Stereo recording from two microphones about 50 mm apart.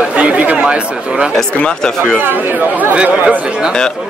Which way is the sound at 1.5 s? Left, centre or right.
Left.